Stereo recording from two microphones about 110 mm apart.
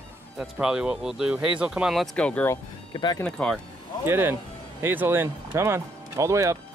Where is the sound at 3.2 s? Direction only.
10° left (ahead or behind).